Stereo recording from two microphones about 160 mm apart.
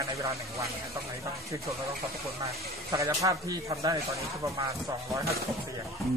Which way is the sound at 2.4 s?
20° right (ahead or behind).